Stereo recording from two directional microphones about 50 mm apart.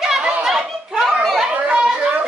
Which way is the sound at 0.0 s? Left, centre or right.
Centre.